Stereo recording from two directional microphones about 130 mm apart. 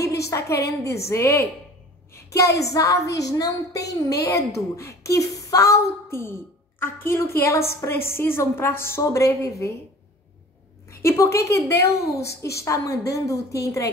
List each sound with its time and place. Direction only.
0.0 s a woman's voice: 25° left (ahead or behind)
10.9 s a woman's voice: 20° left (ahead or behind)